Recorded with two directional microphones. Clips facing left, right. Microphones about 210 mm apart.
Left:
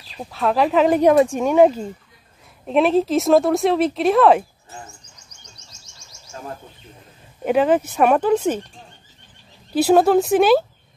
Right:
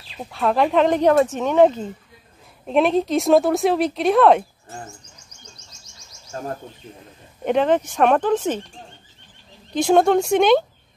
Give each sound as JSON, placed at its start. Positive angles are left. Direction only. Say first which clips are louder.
{"t": 0.2, "sound": "speech", "louder": "even", "side_deg": 0}
{"t": 6.3, "sound": "speech", "louder": "right 5 dB", "side_deg": -45}
{"t": 7.4, "sound": "speech", "louder": "left 1 dB", "side_deg": 5}
{"t": 9.8, "sound": "speech", "louder": "left 2 dB", "side_deg": 5}